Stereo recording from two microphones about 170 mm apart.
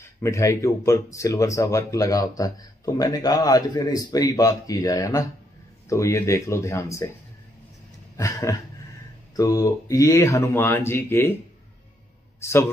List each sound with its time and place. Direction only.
0.0 s speech: 15° left (ahead or behind)
8.2 s speech: 20° left (ahead or behind)
12.4 s a man's voice: 15° left (ahead or behind)